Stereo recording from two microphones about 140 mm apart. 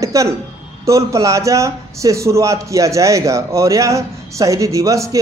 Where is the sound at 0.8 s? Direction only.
20° right (ahead or behind).